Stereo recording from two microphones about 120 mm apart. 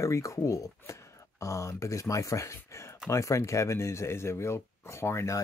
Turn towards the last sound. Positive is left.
turn(degrees=25)  # may be behind; listen again after turning